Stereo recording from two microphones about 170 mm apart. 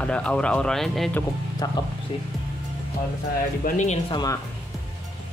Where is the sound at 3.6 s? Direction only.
45° left (ahead or behind).